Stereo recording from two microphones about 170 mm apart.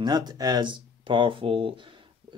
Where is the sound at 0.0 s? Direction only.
25° right (ahead or behind).